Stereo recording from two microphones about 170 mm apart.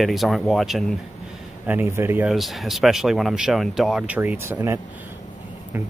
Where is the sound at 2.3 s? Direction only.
Centre (ahead or behind).